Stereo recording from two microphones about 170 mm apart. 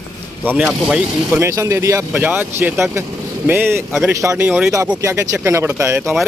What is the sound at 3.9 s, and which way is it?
Speech, centre (ahead or behind).